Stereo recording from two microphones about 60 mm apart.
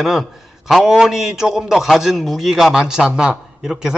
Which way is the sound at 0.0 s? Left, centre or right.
Centre.